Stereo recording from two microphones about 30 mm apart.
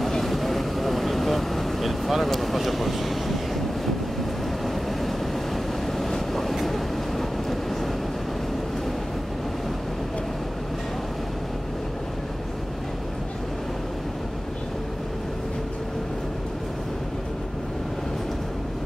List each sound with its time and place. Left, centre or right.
0.2 s vehicle: centre
5.9 s train: centre